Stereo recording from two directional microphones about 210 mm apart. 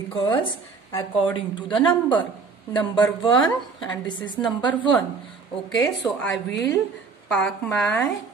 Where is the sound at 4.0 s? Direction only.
20° left (ahead or behind).